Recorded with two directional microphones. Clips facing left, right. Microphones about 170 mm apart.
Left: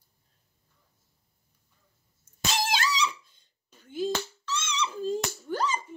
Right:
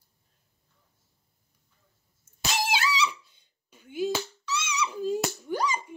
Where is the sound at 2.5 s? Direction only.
10° right (ahead or behind).